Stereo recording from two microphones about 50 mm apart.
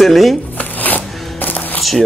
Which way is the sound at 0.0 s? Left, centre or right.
Centre.